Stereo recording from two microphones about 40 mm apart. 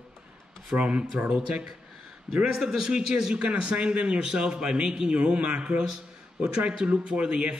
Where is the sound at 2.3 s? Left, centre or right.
Centre; by 5.8 s right.